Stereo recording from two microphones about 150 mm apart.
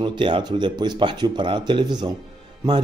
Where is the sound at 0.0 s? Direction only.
30° right (ahead or behind).